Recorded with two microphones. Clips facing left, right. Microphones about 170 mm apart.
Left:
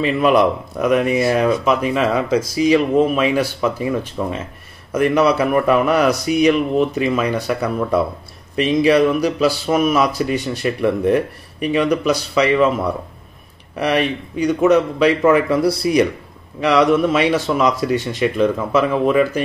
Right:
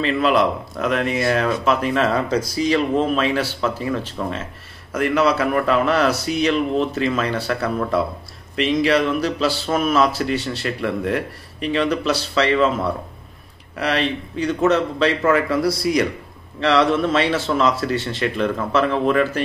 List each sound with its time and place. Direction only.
0.0 s speech: 10° left (ahead or behind)
13.7 s speech: 15° left (ahead or behind)